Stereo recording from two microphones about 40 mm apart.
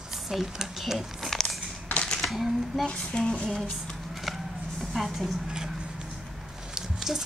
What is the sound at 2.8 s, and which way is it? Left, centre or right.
Speech, left.